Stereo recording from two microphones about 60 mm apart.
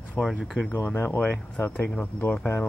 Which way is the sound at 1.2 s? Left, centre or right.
Left.